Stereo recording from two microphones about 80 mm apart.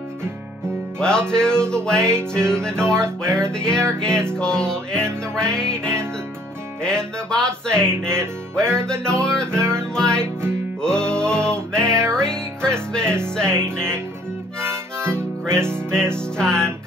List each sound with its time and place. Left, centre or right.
0.9 s music: centre
13.7 s speech: right
15.0 s harmonica: right
15.7 s music: centre